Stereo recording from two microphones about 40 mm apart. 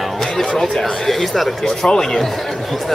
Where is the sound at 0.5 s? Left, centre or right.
Centre.